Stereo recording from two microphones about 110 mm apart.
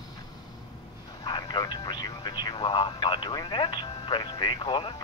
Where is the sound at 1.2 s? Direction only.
40° left (ahead or behind).